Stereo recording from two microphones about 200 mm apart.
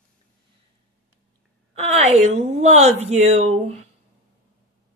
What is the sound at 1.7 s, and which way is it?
Speech, 30° right (ahead or behind).